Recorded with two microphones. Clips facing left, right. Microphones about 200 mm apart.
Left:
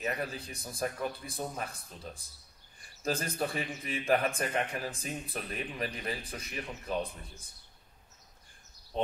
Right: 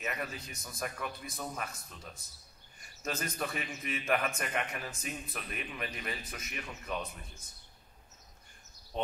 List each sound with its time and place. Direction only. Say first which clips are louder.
0.0 s a man's voice: left 4 dB; 30° left (ahead or behind)